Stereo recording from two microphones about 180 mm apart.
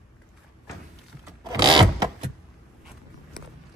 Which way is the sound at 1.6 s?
25° right (ahead or behind).